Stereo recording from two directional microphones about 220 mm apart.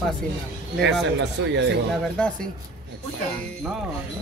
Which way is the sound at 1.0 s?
55° right (ahead or behind).